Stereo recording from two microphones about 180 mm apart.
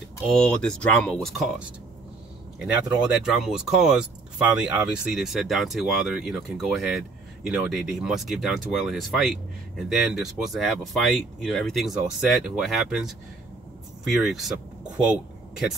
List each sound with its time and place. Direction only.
0.3 s speech: 5° left (ahead or behind)
14.2 s speech: centre (ahead or behind)